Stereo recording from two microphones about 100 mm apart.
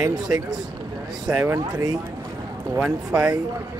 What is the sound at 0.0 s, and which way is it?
Speech, 40° right (ahead or behind).